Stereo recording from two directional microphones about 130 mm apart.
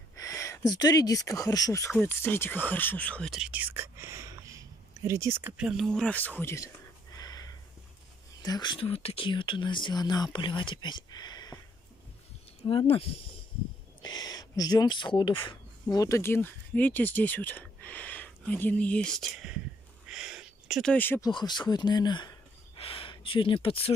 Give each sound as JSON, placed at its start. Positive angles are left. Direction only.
{"t": 0.1, "sound": "speech", "side_deg": 25}
{"t": 2.0, "sound": "speech", "side_deg": 15}
{"t": 3.3, "sound": "whispering", "side_deg": -5}
{"t": 5.6, "sound": "speech", "side_deg": -5}
{"t": 5.9, "sound": "speech", "side_deg": 5}
{"t": 7.2, "sound": "a sound", "side_deg": 30}
{"t": 8.4, "sound": "speech", "side_deg": 30}
{"t": 12.6, "sound": "speech", "side_deg": 45}
{"t": 14.0, "sound": "speech", "side_deg": 30}
{"t": 16.0, "sound": "speech", "side_deg": 20}
{"t": 20.1, "sound": "a sound", "side_deg": -5}
{"t": 20.9, "sound": "speech", "side_deg": 15}
{"t": 21.2, "sound": "speech", "side_deg": 35}
{"t": 22.8, "sound": "a sound", "side_deg": 45}